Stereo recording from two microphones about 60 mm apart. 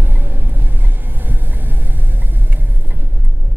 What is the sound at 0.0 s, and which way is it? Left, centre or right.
Vehicle, right.